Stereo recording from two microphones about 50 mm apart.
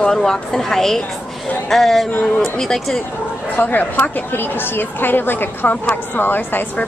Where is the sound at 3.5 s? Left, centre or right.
Left.